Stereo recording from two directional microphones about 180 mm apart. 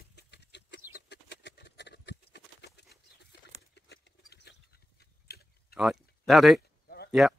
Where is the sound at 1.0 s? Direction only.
75° left (ahead or behind).